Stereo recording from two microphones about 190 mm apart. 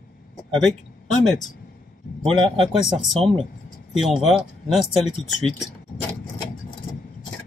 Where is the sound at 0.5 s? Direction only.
Centre (ahead or behind).